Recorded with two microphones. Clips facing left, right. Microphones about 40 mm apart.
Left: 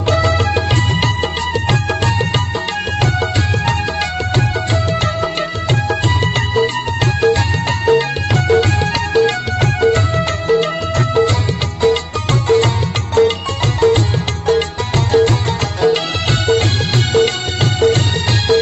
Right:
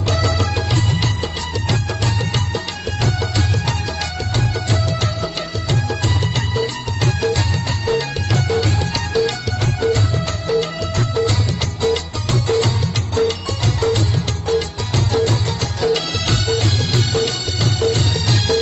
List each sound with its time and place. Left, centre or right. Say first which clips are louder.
0.1 s music: left 6 dB; left
5.0 s music: left 5 dB; left